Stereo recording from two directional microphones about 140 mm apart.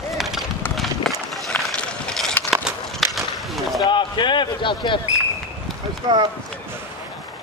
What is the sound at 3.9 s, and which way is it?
Basketball bounce, 35° left (ahead or behind).